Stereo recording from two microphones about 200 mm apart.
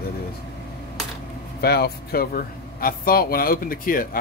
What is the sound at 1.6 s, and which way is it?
Speech, 55° left (ahead or behind).